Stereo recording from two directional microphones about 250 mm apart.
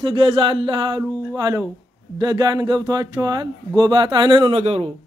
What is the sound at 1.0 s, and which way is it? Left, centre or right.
Speech, centre.